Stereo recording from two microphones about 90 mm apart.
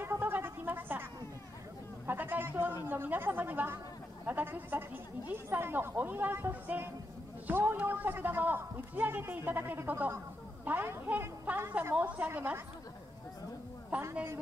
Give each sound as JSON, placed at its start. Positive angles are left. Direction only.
{"t": 0.0, "sound": "music", "side_deg": -25}
{"t": 2.0, "sound": "a sound", "side_deg": -20}
{"t": 2.9, "sound": "a woman's voice", "side_deg": -25}
{"t": 13.9, "sound": "a woman's voice", "side_deg": -15}